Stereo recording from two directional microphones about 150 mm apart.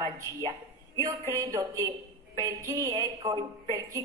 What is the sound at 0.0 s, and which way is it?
A woman's voice, 25° right (ahead or behind).